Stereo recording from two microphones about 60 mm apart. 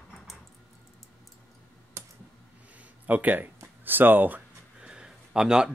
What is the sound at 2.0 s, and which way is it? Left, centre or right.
Computer keyboard, right.